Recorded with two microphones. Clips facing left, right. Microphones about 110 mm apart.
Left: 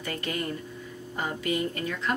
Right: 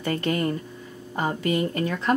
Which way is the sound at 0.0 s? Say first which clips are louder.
Right 7 dB; 45° right (ahead or behind).